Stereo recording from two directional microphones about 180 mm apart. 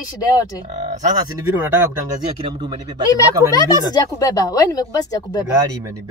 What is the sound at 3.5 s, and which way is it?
Speech, 20° left (ahead or behind).